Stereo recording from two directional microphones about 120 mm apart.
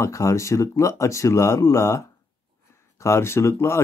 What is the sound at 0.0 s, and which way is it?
Speech, 25° left (ahead or behind).